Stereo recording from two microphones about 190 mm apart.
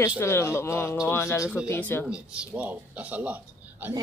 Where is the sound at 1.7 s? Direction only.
10° left (ahead or behind).